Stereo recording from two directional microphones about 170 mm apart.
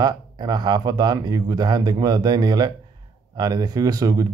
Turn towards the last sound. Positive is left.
turn(degrees=-20)  # may be behind; listen again after turning